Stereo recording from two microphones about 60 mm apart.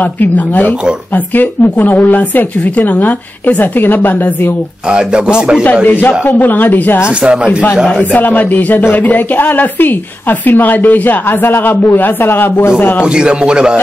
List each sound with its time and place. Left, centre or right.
0.0 s speech: left
4.8 s speech: centre
5.9 s speech: left
7.1 s speech: centre
8.0 s speech: left
13.0 s speech: centre